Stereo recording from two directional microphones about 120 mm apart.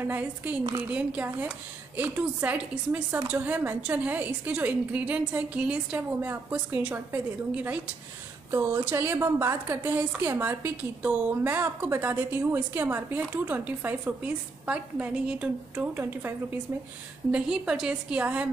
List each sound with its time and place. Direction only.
0.0 s a woman's voice: 15° right (ahead or behind)
17.3 s a woman's voice: 5° right (ahead or behind)